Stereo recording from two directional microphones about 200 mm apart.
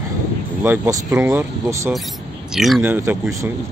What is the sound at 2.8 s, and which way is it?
Speech, 10° right (ahead or behind).